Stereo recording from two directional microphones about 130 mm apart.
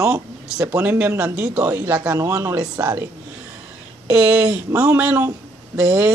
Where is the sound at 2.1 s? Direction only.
20° right (ahead or behind).